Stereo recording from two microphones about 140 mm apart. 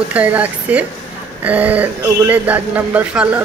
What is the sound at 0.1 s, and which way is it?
Speech, 10° right (ahead or behind).